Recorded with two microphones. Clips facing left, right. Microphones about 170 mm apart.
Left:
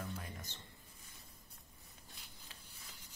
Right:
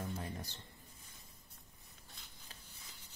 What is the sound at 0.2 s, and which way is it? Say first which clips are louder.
Music: right 5 dB; 35° right (ahead or behind).